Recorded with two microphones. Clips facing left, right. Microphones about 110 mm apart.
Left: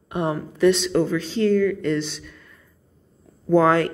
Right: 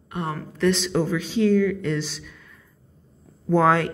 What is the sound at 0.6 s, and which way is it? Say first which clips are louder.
Speech: left 4 dB; centre (ahead or behind).